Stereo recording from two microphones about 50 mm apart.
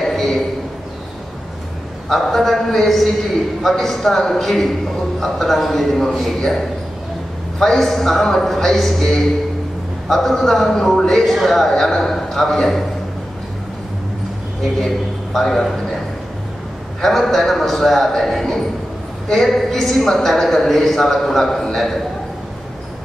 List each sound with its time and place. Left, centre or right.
0.0 s a sound: centre
2.0 s a man's voice: centre
14.6 s a man's voice: centre
17.0 s a man's voice: centre